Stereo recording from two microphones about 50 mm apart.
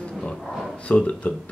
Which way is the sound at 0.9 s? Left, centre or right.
Left.